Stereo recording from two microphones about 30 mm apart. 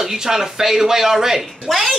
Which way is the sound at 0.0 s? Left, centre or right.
Centre.